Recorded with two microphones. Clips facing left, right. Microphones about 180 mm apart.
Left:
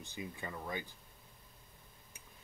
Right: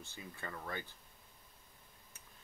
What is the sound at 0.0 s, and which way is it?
Speech, 15° left (ahead or behind).